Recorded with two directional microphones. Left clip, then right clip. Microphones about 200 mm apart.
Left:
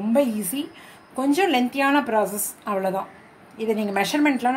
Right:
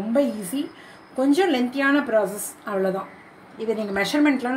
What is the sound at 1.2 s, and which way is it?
Speech, 30° left (ahead or behind).